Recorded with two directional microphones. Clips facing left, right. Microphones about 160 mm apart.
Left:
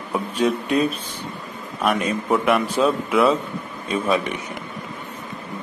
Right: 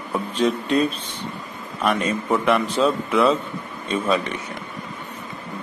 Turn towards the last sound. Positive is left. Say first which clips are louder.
# even
turn(degrees=15)  # may be behind; listen again after turning